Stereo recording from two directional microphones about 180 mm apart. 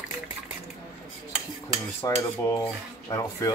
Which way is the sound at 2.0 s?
20° left (ahead or behind).